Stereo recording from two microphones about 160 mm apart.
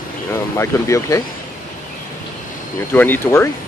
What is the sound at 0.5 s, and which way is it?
Speech, 20° left (ahead or behind).